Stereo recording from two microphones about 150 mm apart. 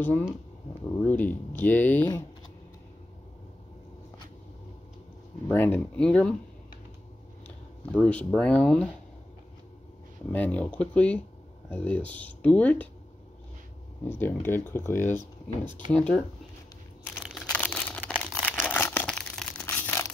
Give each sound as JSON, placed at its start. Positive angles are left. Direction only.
{"t": 1.0, "sound": "speech", "side_deg": 10}
{"t": 5.5, "sound": "speech", "side_deg": 15}
{"t": 7.4, "sound": "a sound", "side_deg": 10}
{"t": 8.3, "sound": "speech", "side_deg": 5}
{"t": 10.3, "sound": "speech", "side_deg": 10}
{"t": 14.0, "sound": "speech", "side_deg": 15}
{"t": 15.1, "sound": "speech", "side_deg": -30}
{"t": 15.9, "sound": "speech", "side_deg": 5}
{"t": 17.2, "sound": "crumpling", "side_deg": 5}
{"t": 19.0, "sound": "a sound", "side_deg": 5}